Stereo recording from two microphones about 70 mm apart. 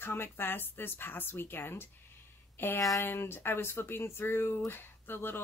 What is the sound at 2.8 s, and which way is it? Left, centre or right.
Speech, left.